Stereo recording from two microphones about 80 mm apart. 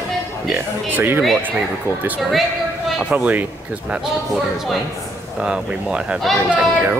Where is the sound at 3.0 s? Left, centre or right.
Centre.